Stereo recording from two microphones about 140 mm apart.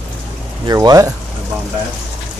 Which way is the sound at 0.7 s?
25° right (ahead or behind).